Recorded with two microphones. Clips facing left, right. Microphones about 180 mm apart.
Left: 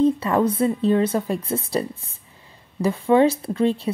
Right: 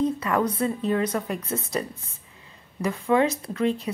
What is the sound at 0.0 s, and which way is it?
Speech, 25° left (ahead or behind).